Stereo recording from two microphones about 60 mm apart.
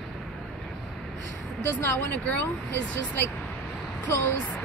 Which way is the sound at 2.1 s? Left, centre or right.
Left.